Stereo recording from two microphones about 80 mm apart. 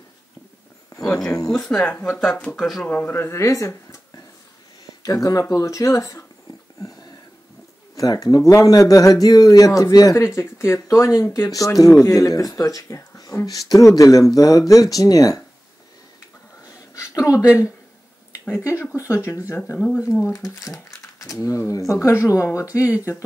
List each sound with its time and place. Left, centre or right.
0.9 s speech: centre
3.1 s speech: left
5.0 s speech: left
6.8 s a sound: left
7.9 s speech: left
10.1 s speech: left
16.6 s a sound: left
18.6 s speech: left